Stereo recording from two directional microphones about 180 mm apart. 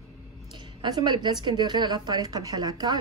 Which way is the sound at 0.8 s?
25° right (ahead or behind).